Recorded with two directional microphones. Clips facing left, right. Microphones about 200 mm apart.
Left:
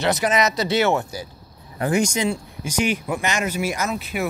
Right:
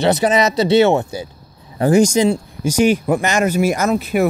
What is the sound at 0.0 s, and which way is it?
Speech, 30° right (ahead or behind).